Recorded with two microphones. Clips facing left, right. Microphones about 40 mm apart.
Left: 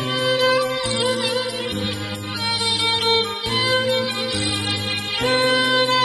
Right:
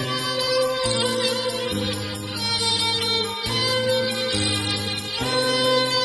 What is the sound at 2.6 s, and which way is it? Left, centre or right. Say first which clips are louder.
Music: left 4 dB; left.